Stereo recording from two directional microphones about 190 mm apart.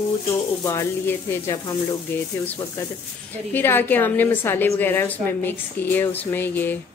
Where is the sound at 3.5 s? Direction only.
10° left (ahead or behind).